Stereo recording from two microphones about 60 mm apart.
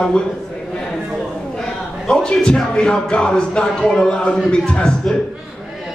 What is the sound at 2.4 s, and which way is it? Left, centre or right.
Speech, centre.